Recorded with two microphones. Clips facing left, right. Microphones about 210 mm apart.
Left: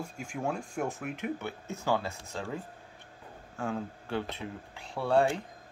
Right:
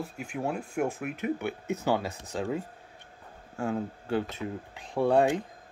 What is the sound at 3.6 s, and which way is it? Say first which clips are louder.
Speech: right 4 dB; 40° right (ahead or behind).